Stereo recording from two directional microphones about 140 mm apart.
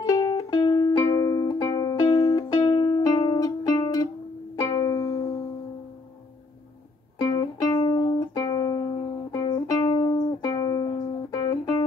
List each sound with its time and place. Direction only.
0.1 s music: 25° left (ahead or behind)
2.5 s music: 30° left (ahead or behind)
7.2 s music: 30° left (ahead or behind)